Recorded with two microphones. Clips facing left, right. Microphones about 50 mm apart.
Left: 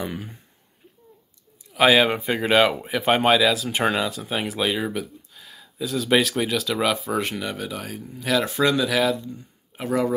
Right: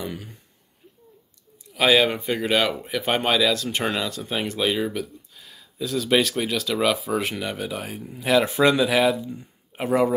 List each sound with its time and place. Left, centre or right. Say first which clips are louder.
0.0 s speech: left 2 dB; left
1.7 s speech: left 2 dB; centre; by 10.1 s right